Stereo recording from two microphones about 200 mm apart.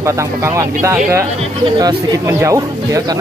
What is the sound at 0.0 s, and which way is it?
Speech, 15° right (ahead or behind).